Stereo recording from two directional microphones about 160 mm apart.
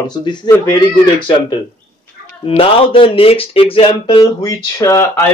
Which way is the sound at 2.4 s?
35° left (ahead or behind).